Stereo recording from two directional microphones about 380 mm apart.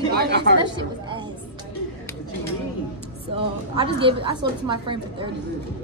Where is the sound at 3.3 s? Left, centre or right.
Centre.